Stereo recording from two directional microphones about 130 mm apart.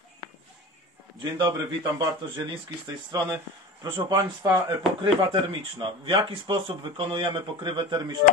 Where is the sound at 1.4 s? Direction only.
35° right (ahead or behind).